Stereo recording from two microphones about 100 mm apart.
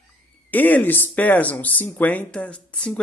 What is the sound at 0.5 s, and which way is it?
Speech, 15° left (ahead or behind).